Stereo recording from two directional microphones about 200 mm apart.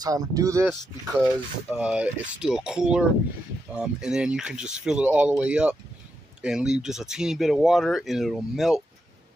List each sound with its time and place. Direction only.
0.0 s speech: 20° right (ahead or behind)
1.2 s speech: centre (ahead or behind)